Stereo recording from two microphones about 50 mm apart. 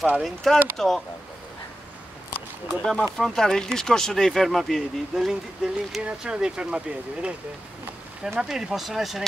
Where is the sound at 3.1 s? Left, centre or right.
Centre.